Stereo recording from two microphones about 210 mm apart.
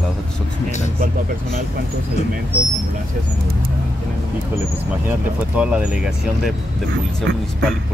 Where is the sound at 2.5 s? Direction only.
45° right (ahead or behind).